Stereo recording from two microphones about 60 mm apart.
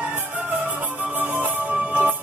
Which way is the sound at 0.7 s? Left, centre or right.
Right.